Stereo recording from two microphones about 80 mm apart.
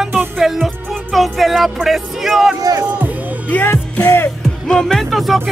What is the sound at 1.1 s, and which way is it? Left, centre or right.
Speech, centre.